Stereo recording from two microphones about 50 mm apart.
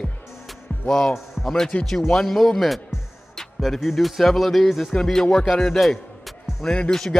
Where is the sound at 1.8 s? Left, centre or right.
Centre.